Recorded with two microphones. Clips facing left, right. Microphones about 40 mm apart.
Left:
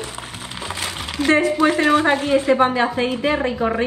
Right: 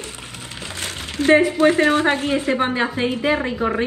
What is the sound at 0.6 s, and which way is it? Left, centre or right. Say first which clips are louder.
Crumpling: left 3 dB; left.